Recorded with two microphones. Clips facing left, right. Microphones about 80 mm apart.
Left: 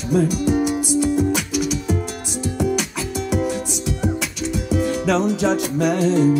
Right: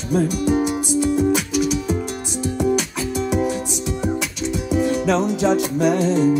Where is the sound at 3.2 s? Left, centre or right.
Right.